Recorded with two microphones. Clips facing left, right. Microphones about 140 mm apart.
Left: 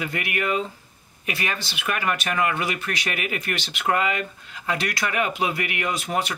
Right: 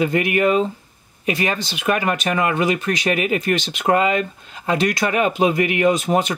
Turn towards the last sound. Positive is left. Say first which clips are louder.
# right 9 dB
turn(degrees=-25)  # may be behind; listen again after turning